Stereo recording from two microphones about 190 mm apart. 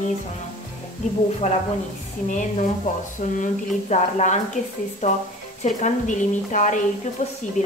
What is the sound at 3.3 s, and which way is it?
A woman's voice, 40° left (ahead or behind).